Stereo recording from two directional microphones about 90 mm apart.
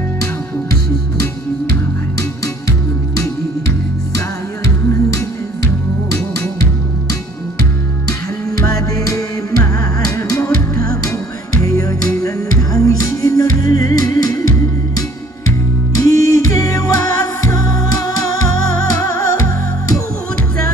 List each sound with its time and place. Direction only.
8.1 s music: 40° left (ahead or behind)
15.9 s music: 40° left (ahead or behind)